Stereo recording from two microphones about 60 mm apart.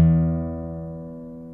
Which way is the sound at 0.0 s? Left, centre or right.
Centre.